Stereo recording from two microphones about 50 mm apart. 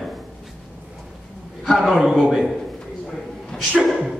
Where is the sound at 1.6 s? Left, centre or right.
Centre.